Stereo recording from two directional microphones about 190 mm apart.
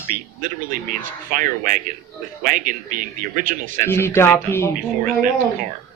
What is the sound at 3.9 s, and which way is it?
Speech, 10° left (ahead or behind).